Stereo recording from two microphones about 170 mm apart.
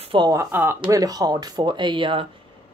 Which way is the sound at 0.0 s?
30° right (ahead or behind).